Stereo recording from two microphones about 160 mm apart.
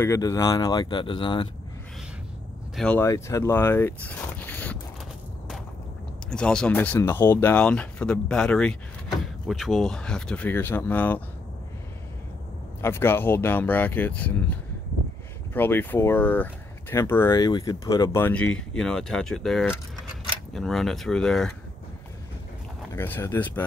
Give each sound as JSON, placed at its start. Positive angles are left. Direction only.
{"t": 0.0, "sound": "speech", "side_deg": 20}
{"t": 2.7, "sound": "speech", "side_deg": 5}
{"t": 3.0, "sound": "speech", "side_deg": 20}
{"t": 6.3, "sound": "speech", "side_deg": 5}
{"t": 12.8, "sound": "speech", "side_deg": 15}
{"t": 22.9, "sound": "speech", "side_deg": 15}